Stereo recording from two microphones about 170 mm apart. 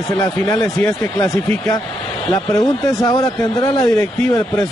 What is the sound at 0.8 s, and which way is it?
Speech, 15° left (ahead or behind).